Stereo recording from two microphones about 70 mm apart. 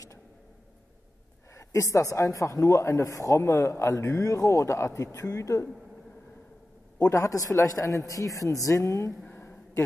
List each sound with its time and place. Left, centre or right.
1.5 s speech: left
7.0 s speech: left
9.2 s a sound: left